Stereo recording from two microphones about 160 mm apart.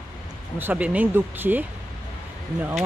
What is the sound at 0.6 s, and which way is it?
Speech, 10° right (ahead or behind).